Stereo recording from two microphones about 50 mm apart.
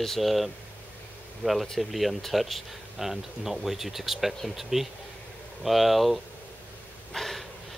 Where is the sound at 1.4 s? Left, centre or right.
Left.